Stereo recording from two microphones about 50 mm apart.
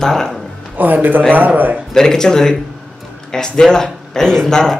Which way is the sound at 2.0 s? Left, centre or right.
Centre.